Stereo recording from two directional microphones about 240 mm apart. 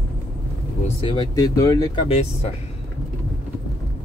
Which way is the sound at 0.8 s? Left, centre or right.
Centre.